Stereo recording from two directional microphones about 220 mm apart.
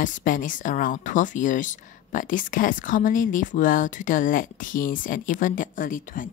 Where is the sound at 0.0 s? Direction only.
35° left (ahead or behind).